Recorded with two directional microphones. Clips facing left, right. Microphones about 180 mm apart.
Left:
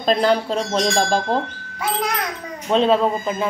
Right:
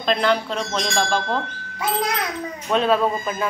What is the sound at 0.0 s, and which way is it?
Speech, 35° left (ahead or behind).